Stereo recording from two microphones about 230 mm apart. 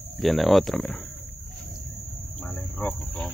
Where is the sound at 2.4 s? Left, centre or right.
Centre.